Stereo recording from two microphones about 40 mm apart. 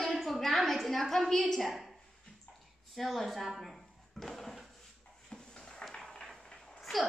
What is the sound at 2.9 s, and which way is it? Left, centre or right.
Speech, centre.